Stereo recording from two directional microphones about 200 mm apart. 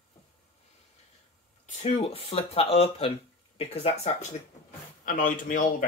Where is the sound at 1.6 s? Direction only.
35° left (ahead or behind).